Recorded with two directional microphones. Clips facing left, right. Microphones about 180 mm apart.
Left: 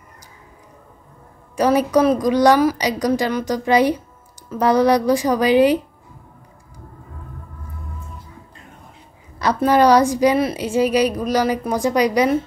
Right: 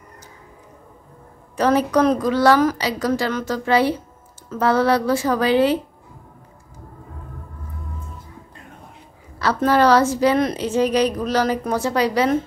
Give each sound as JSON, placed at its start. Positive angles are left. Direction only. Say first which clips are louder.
{"t": 1.6, "sound": "a woman's voice", "louder": "left 1 dB", "side_deg": 10}
{"t": 9.4, "sound": "a woman's voice", "louder": "left 2 dB", "side_deg": 15}